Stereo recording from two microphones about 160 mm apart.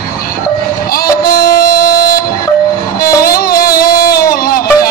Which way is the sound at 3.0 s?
70° left (ahead or behind).